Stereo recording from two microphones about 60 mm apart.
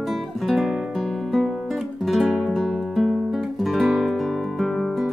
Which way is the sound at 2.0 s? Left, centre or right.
Centre.